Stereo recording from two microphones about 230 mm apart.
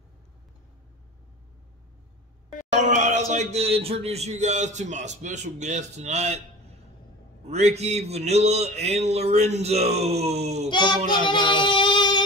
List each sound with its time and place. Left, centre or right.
2.7 s speech: right
7.4 s speech: right
10.7 s child singing: centre